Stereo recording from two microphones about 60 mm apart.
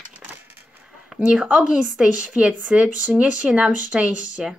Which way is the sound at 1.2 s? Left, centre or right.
Centre.